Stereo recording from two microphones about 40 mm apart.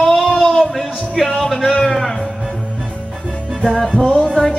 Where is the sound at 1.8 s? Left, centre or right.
Centre.